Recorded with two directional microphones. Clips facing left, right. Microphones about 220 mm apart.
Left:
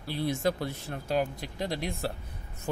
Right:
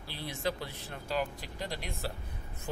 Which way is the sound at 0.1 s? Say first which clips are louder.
Left 7 dB; 45° left (ahead or behind).